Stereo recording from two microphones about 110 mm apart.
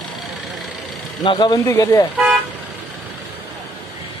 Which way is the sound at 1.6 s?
25° left (ahead or behind).